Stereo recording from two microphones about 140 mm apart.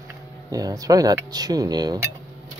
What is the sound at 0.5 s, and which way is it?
Speech, 25° right (ahead or behind).